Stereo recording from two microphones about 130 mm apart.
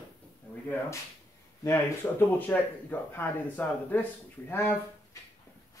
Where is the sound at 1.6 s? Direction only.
20° left (ahead or behind).